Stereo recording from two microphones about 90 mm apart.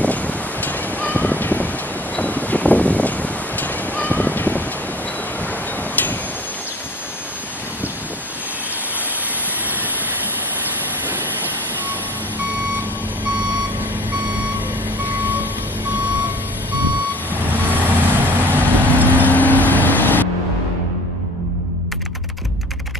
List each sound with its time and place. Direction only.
0.0 s a sound: 15° left (ahead or behind)
17.5 s vehicle: 20° right (ahead or behind)
19.2 s vehicle: 20° left (ahead or behind)